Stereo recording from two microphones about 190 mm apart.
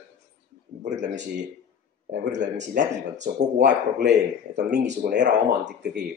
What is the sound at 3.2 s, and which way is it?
Speech, 60° right (ahead or behind).